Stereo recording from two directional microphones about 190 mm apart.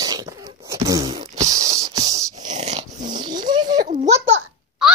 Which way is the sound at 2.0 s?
35° right (ahead or behind).